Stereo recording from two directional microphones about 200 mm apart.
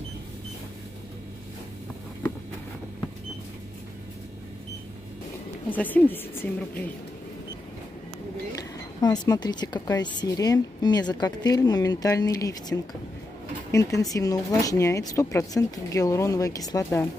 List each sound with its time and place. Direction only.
5.7 s speech: 10° left (ahead or behind)
8.5 s a woman's voice: 20° left (ahead or behind)